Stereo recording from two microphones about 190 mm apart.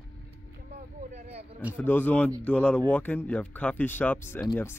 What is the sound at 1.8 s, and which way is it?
Speech, 10° left (ahead or behind).